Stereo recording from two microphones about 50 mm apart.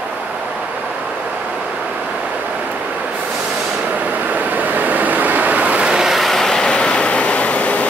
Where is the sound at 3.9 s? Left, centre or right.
Right; by 6.1 s centre.